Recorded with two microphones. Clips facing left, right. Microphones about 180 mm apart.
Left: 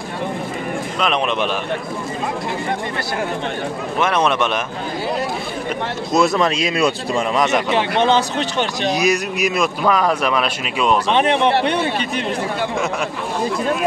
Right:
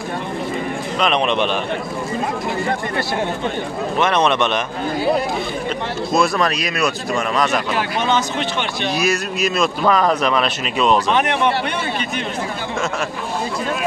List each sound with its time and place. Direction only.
1.0 s a man's voice: 5° left (ahead or behind)
4.0 s speech: 5° left (ahead or behind)
6.1 s speech: 20° left (ahead or behind); by 8.9 s 35° left (ahead or behind)
8.9 s speech: 15° left (ahead or behind)
11.1 s speech: 30° left (ahead or behind)